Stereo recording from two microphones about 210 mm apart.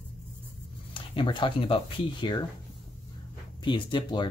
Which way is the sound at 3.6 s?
25° left (ahead or behind).